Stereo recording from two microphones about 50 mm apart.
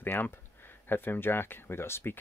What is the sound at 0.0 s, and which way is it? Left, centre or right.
Speech, left.